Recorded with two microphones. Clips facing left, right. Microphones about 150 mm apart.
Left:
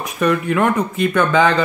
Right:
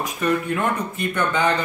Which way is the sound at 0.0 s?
85° left.